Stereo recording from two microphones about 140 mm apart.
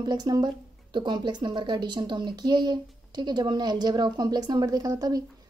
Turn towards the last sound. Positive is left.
turn(degrees=-25)  # may be behind; listen again after turning